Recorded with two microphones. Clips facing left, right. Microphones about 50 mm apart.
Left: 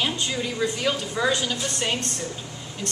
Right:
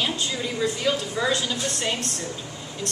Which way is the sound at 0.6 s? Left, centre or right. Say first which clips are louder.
Right 2 dB; centre.